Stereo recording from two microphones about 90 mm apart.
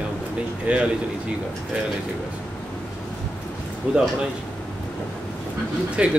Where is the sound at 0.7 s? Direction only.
15° right (ahead or behind).